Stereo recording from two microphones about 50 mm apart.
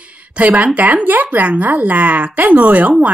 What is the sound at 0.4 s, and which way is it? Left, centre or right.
A woman's voice, right.